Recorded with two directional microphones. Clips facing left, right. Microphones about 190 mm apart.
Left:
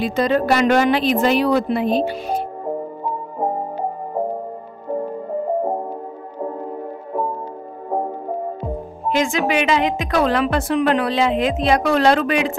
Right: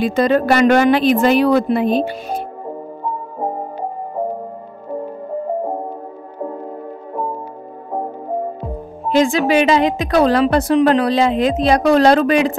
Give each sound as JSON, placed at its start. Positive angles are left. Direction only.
{"t": 0.0, "sound": "speech", "side_deg": -50}
{"t": 9.1, "sound": "a woman's voice", "side_deg": -35}